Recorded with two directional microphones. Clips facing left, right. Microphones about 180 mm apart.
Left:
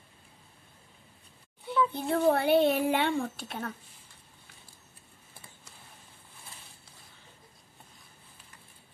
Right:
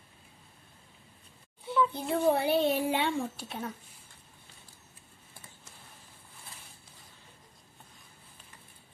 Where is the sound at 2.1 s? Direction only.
60° left (ahead or behind).